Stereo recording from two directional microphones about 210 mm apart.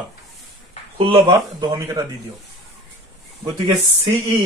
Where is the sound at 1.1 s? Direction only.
20° right (ahead or behind).